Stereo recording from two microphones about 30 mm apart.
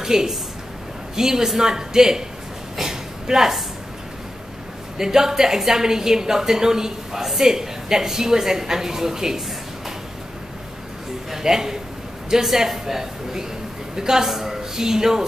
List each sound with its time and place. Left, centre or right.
0.0 s a woman's voice: centre
2.8 s a sound: centre
4.9 s a woman's voice: centre
11.3 s a woman's voice: centre